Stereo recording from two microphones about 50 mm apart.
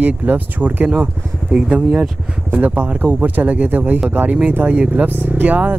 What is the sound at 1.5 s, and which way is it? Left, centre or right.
Speech, centre.